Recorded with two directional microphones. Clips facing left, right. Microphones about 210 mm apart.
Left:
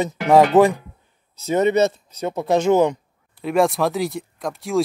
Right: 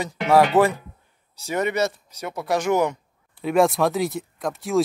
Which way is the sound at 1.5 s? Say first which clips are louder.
Left 6 dB; 25° left (ahead or behind).